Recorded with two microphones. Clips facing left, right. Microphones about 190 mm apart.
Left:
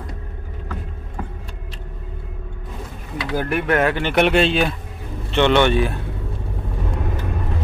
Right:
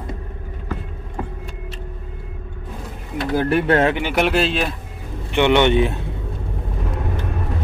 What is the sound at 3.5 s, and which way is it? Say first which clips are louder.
Speech: right 2 dB; 30° right (ahead or behind).